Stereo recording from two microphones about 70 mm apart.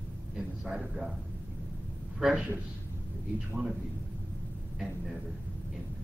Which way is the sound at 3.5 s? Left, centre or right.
Centre.